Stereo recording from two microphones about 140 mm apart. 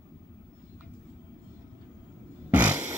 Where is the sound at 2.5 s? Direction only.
10° right (ahead or behind).